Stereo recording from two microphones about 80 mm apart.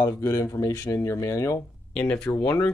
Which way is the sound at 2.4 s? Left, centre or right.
Left.